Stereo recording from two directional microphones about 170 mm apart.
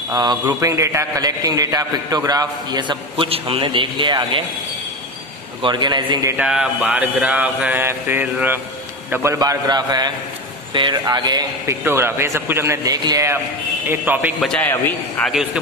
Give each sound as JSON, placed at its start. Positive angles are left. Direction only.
{"t": 0.1, "sound": "a man's voice", "side_deg": -25}
{"t": 5.6, "sound": "a man's voice", "side_deg": -25}
{"t": 6.3, "sound": "a man's voice", "side_deg": -5}
{"t": 14.4, "sound": "a man's voice", "side_deg": 5}